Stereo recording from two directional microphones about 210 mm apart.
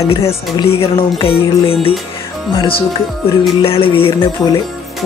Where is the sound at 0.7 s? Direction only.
25° left (ahead or behind).